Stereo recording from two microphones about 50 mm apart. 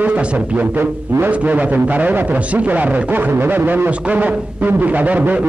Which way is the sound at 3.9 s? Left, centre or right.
Right.